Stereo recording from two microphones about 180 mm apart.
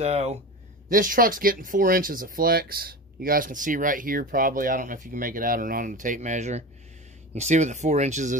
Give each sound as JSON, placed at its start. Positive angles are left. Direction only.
{"t": 0.0, "sound": "speech", "side_deg": -35}
{"t": 0.8, "sound": "speech", "side_deg": -50}